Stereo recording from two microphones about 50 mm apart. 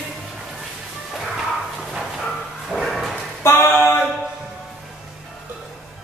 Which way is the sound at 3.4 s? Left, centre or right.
Left.